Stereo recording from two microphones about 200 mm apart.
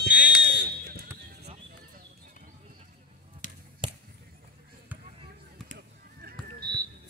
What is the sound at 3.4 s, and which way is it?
Basketball bounce, 40° left (ahead or behind).